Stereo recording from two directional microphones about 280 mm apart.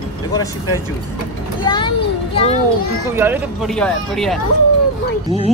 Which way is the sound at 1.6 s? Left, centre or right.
Centre.